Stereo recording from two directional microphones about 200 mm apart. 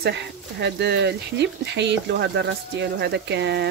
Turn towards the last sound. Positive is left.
turn(degrees=-60)  # may be behind; listen again after turning